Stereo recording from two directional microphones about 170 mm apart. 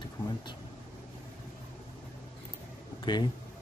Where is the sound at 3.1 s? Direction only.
25° left (ahead or behind).